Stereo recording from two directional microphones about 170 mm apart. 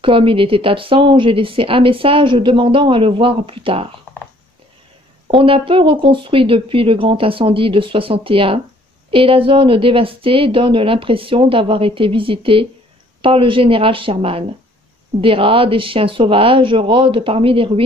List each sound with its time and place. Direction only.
0.0 s speech: 30° right (ahead or behind)
5.3 s speech: 30° right (ahead or behind)